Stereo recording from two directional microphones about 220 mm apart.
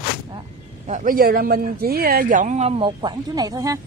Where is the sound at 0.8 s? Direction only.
35° right (ahead or behind).